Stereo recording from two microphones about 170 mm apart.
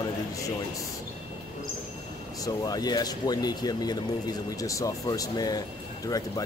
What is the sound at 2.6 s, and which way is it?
Speech, 20° left (ahead or behind).